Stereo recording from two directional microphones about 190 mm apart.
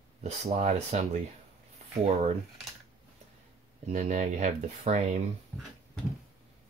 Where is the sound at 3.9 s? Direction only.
40° right (ahead or behind).